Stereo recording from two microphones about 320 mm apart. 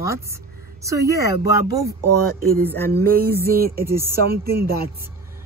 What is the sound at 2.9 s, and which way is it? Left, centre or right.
Music, right.